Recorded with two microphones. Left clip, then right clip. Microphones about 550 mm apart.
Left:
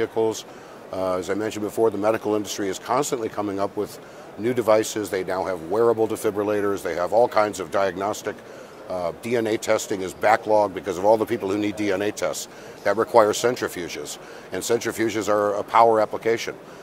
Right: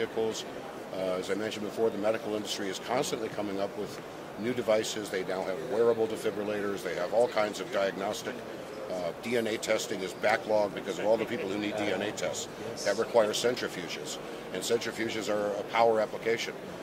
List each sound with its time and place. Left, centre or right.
0.0 s speech: left